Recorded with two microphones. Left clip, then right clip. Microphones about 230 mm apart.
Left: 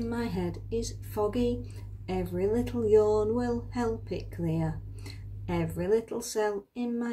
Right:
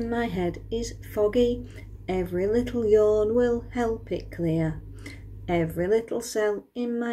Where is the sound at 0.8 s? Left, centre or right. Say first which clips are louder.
Right 2 dB; left.